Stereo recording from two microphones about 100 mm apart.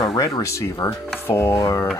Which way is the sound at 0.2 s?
30° left (ahead or behind).